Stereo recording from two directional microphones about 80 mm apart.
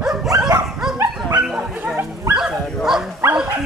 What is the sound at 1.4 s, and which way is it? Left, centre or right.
Bow-wow, centre.